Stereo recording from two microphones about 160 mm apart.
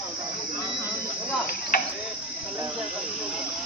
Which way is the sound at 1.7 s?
65° left (ahead or behind).